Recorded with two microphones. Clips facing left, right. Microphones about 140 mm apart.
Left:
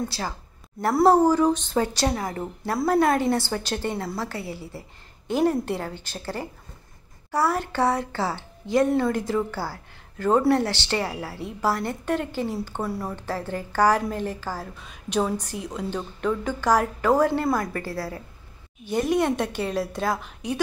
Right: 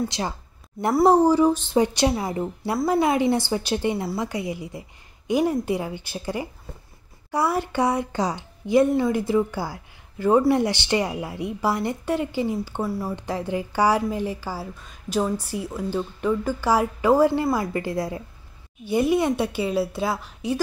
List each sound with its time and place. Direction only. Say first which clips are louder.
0.1 s a woman's voice: right 3 dB; 20° right (ahead or behind)
12.8 s speech: right 2 dB; centre (ahead or behind)
13.1 s a woman's voice: right 3 dB; 15° right (ahead or behind)
14.9 s a woman's voice: even; centre (ahead or behind)